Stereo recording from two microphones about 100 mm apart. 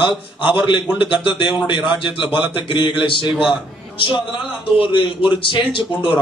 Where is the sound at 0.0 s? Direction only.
55° left (ahead or behind).